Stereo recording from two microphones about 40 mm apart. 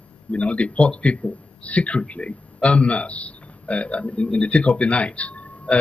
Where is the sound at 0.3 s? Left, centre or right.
Left.